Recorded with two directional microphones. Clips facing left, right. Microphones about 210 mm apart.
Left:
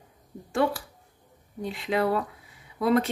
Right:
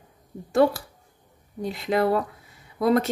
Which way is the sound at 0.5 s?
40° right (ahead or behind).